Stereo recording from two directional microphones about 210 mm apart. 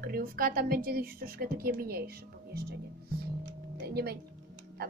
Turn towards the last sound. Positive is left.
turn(degrees=-50)  # may be behind; listen again after turning